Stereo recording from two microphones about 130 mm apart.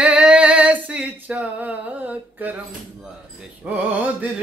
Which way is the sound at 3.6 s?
10° right (ahead or behind).